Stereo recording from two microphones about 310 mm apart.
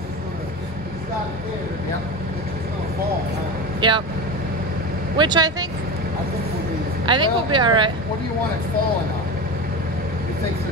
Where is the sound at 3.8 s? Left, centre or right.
Centre.